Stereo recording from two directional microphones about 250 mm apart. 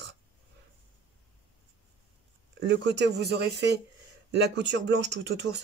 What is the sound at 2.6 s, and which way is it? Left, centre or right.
Speech, right.